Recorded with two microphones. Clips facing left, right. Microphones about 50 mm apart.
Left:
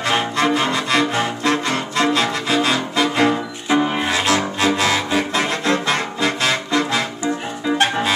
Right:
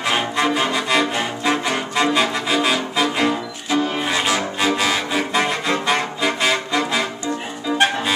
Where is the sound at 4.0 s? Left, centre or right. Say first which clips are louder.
Left 2 dB; centre.